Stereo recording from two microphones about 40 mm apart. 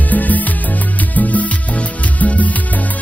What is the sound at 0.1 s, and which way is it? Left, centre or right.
Music, left.